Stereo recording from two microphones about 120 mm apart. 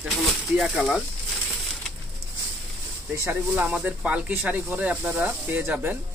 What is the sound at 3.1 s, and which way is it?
Speech, 20° right (ahead or behind).